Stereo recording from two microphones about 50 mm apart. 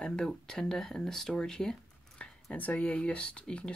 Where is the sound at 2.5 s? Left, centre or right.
Left.